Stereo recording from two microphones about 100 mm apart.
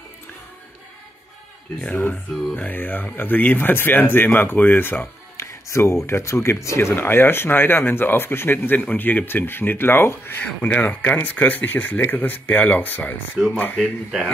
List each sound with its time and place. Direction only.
2.5 s speech: 20° left (ahead or behind)
13.7 s speech: centre (ahead or behind)